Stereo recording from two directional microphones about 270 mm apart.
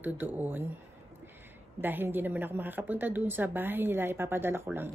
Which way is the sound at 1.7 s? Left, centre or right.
Centre.